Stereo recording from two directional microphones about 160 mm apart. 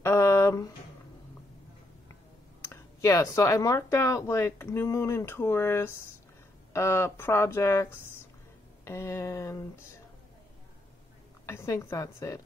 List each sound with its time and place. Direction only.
0.0 s a sound: 15° left (ahead or behind)
2.7 s speech: 20° left (ahead or behind)
11.4 s a woman's voice: 20° left (ahead or behind)